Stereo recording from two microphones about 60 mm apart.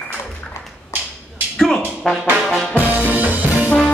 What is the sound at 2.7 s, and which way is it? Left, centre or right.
Music, right.